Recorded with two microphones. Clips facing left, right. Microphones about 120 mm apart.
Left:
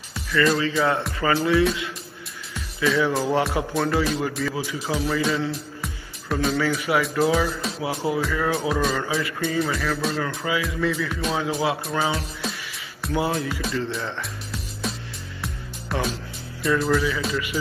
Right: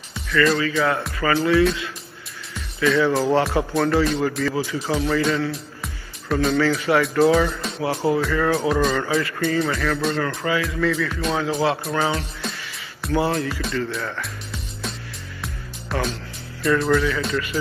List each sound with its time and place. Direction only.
0.3 s speech: 5° left (ahead or behind)
1.2 s speech: 15° left (ahead or behind)
2.8 s speech: 5° left (ahead or behind)
14.5 s music: centre (ahead or behind)
16.6 s speech: centre (ahead or behind)